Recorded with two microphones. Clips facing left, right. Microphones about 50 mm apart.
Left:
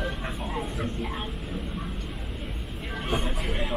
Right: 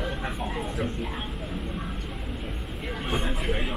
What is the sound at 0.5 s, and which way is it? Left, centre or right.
Speech, centre.